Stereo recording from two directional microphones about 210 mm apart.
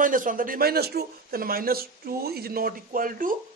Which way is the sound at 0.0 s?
40° right (ahead or behind).